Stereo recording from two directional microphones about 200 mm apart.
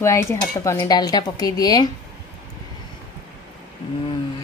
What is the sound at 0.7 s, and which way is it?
A woman's voice, 20° left (ahead or behind).